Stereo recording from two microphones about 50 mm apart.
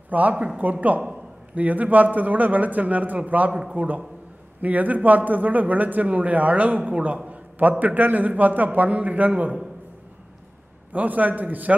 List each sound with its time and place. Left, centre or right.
0.1 s a man's voice: right
7.2 s a sound: right
7.8 s a man's voice: right
10.9 s a man's voice: right